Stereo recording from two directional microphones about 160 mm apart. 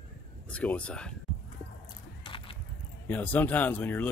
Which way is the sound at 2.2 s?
30° left (ahead or behind).